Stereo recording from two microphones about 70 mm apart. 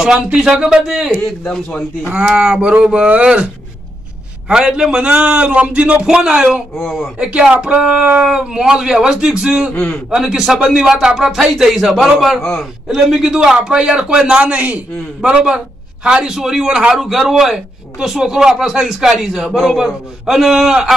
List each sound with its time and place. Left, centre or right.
0.0 s speech: centre
1.4 s a man's voice: centre
2.0 s speech: centre
4.5 s a man's voice: centre
12.8 s speech: centre